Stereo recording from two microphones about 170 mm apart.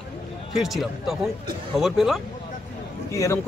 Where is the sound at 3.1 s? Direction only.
20° left (ahead or behind).